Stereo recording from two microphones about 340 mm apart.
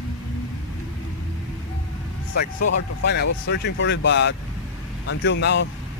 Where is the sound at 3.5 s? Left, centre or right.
Left.